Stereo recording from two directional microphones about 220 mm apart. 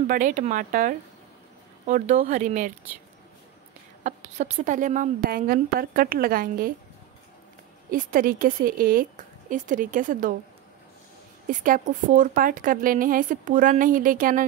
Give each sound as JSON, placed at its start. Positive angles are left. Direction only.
{"t": 0.1, "sound": "a woman's voice", "side_deg": -35}
{"t": 4.0, "sound": "a woman's voice", "side_deg": -30}
{"t": 7.9, "sound": "a woman's voice", "side_deg": -40}
{"t": 11.4, "sound": "a woman's voice", "side_deg": -40}